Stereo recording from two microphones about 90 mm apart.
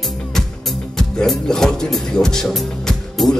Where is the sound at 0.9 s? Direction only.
5° left (ahead or behind).